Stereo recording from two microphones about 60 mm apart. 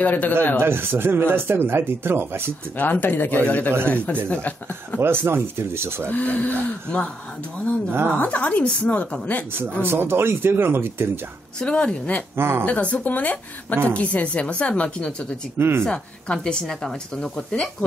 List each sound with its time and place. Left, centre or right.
0.0 s speech: left
0.6 s speech: right
2.8 s speech: left
5.0 s speech: right
6.0 s speech: left
7.9 s speech: right
8.2 s speech: left
9.5 s speech: right
11.6 s a woman's voice: centre
12.4 s speech: right
12.6 s speech: left
15.5 s speech: right
15.8 s a woman's voice: centre